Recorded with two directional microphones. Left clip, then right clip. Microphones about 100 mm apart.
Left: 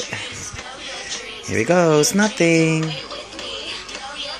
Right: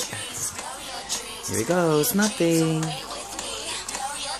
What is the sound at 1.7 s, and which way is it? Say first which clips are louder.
Speech: left 6 dB; 35° left (ahead or behind).